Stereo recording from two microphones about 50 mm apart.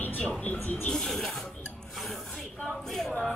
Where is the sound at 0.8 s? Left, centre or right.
Centre.